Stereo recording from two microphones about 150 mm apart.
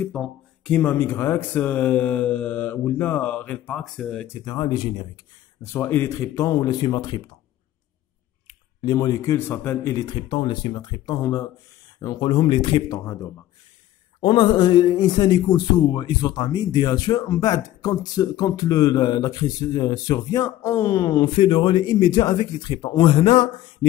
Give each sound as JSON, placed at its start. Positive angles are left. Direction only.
{"t": 0.0, "sound": "speech", "side_deg": 5}
{"t": 4.3, "sound": "a man's voice", "side_deg": 25}
{"t": 5.6, "sound": "a man's voice", "side_deg": 15}
{"t": 8.8, "sound": "speech", "side_deg": 25}
{"t": 10.0, "sound": "a man's voice", "side_deg": 35}
{"t": 14.2, "sound": "a man's voice", "side_deg": 35}